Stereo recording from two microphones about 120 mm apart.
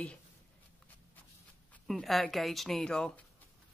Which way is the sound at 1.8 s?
Centre (ahead or behind).